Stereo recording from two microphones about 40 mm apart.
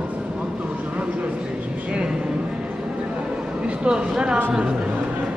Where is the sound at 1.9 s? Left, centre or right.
Right.